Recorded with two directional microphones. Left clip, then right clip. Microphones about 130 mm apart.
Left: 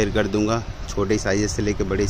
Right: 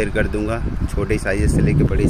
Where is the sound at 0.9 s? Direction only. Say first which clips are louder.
Even; 20° left (ahead or behind).